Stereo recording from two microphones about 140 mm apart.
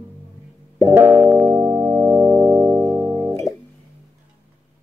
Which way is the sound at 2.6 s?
5° right (ahead or behind).